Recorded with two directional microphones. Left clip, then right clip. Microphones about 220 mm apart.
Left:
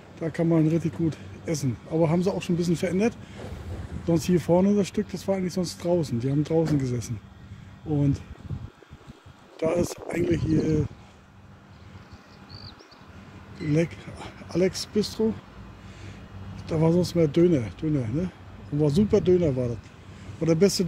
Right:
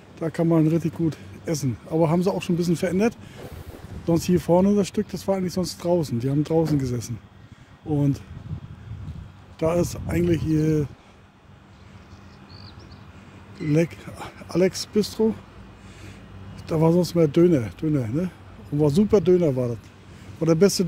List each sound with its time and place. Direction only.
0.2 s speech: 30° right (ahead or behind)
9.6 s speech: 30° right (ahead or behind)
13.7 s speech: 35° right (ahead or behind)
16.6 s speech: 35° right (ahead or behind)